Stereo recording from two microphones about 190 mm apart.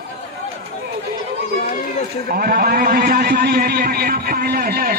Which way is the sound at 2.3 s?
50° right (ahead or behind).